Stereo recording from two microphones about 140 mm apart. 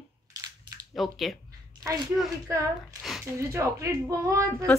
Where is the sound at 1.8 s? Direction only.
25° right (ahead or behind).